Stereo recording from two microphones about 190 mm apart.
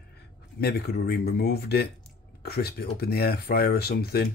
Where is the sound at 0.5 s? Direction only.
55° left (ahead or behind).